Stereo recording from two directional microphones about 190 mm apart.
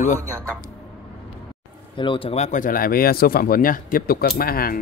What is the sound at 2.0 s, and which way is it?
Speech, 25° left (ahead or behind).